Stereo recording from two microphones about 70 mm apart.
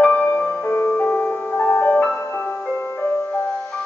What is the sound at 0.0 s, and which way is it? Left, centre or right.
Music, left.